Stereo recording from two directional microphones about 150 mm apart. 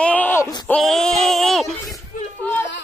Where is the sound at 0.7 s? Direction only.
Centre (ahead or behind).